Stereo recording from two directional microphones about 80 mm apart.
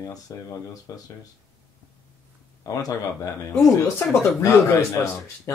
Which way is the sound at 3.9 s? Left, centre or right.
Left.